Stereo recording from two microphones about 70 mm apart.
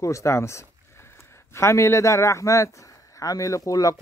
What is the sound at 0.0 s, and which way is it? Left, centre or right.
A man's voice, left.